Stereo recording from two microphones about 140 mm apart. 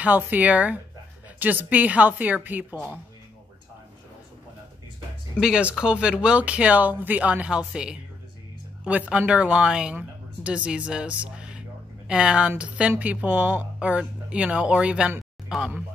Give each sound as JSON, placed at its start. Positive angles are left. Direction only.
{"t": 0.0, "sound": "speech", "side_deg": -10}
{"t": 5.4, "sound": "speech", "side_deg": -5}
{"t": 11.3, "sound": "a sound", "side_deg": -5}
{"t": 12.1, "sound": "speech", "side_deg": -5}